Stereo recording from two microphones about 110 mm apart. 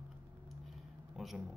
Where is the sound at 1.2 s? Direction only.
Centre (ahead or behind).